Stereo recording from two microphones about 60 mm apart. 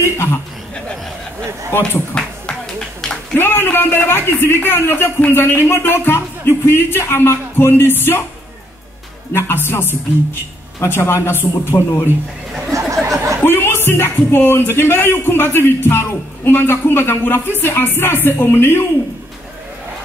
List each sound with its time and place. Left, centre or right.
0.0 s a man's voice: left
1.8 s speech: centre
3.3 s a man's voice: left
9.3 s a man's voice: left
11.0 s a man's voice: left
12.7 s a sound: right
13.4 s music: left
13.8 s a man's voice: left